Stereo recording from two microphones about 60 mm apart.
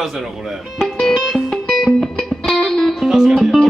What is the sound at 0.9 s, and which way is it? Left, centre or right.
Music, centre.